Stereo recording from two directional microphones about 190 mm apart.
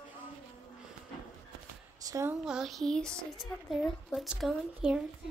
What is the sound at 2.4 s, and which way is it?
Speech, centre (ahead or behind).